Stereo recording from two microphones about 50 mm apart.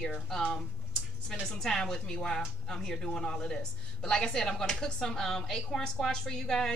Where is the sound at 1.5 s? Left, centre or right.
Centre.